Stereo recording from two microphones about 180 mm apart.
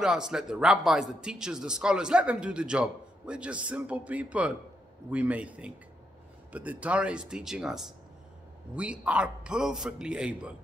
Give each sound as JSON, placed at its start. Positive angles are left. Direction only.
{"t": 0.0, "sound": "a man's voice", "side_deg": -5}